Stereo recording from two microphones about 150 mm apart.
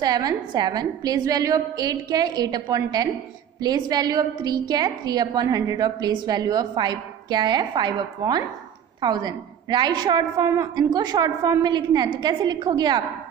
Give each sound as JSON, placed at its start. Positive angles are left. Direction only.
{"t": 0.0, "sound": "a woman's voice", "side_deg": -25}